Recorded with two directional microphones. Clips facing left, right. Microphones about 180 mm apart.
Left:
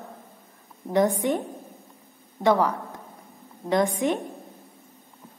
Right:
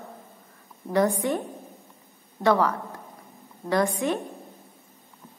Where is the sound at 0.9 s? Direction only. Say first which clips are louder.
Left 1 dB; 20° left (ahead or behind).